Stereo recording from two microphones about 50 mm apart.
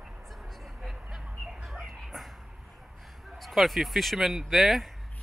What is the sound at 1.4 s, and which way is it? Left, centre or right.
Chicken, centre.